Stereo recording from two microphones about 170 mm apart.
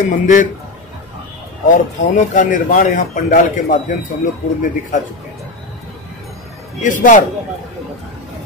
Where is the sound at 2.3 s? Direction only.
50° left (ahead or behind).